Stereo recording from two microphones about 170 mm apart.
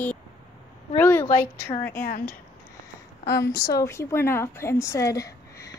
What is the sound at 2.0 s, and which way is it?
Speech, 55° left (ahead or behind).